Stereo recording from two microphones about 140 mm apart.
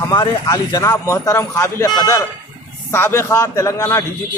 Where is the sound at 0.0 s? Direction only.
30° left (ahead or behind).